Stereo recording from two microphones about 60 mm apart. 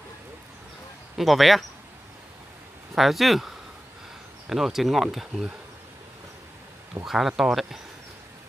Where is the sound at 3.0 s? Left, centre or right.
Centre.